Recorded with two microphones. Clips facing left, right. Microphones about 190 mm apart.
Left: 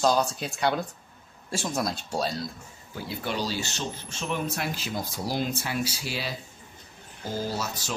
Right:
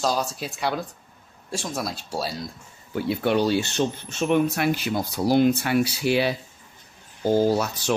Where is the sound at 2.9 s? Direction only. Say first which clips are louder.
Right 10 dB; 60° right (ahead or behind).